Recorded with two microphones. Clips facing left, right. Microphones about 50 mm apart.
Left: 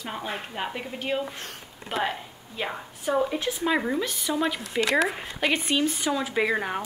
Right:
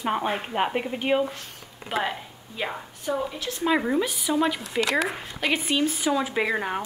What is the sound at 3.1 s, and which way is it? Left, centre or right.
Speech, centre.